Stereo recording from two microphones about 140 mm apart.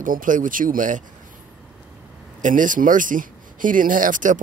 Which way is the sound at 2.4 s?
70° right (ahead or behind).